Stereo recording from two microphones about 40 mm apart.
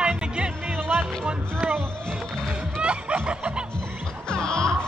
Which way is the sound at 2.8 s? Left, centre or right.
Right.